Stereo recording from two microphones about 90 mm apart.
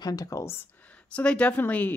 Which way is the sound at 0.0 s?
45° left (ahead or behind).